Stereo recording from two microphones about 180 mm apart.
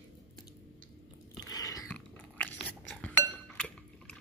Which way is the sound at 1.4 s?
20° left (ahead or behind).